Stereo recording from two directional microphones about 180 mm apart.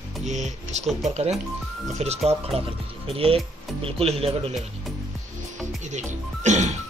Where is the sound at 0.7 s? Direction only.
40° right (ahead or behind).